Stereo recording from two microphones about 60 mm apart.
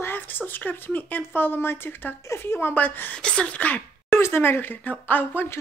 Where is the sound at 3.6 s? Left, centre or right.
Left.